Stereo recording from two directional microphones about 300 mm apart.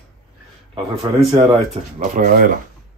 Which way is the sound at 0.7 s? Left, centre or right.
Centre.